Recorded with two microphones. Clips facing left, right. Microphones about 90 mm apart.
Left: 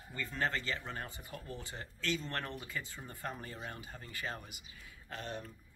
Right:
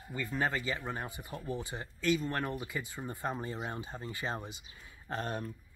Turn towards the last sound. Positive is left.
turn(degrees=-45)  # may be behind; listen again after turning